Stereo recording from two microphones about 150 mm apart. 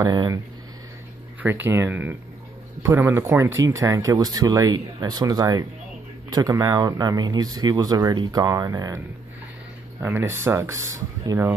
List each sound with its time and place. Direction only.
0.0 s speech: 25° right (ahead or behind)
1.4 s speech: 15° right (ahead or behind)